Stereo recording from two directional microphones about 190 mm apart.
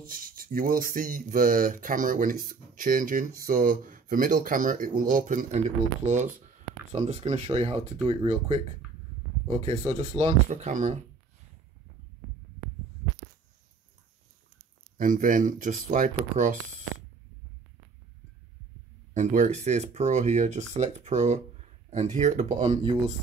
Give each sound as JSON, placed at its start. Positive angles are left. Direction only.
{"t": 0.0, "sound": "speech", "side_deg": -50}
{"t": 9.7, "sound": "speech", "side_deg": -35}
{"t": 15.0, "sound": "speech", "side_deg": -45}
{"t": 19.1, "sound": "speech", "side_deg": -40}